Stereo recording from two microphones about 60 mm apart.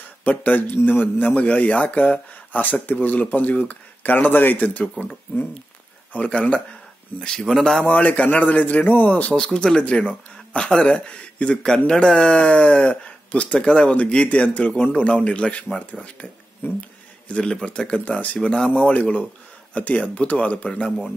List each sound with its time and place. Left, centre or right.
0.2 s speech: left
6.1 s speech: left; by 7.8 s centre
7.8 s speech: left
9.3 s speech: centre
16.6 s speech: left
17.3 s speech: centre